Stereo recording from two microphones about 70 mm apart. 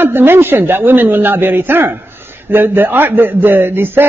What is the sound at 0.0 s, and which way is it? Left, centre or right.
A man's voice, right.